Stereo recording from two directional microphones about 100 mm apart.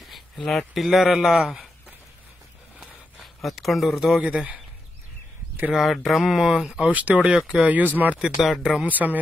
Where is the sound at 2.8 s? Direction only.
Centre (ahead or behind).